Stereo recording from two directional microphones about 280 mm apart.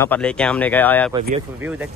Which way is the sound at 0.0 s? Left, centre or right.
Centre.